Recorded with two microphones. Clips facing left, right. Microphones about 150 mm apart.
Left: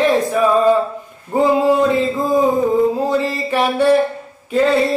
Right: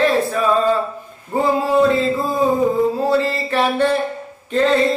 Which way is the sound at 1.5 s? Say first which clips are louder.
Left 1 dB; 15° left (ahead or behind).